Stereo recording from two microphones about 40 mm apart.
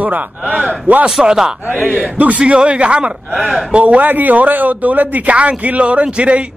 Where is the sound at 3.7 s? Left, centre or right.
Right.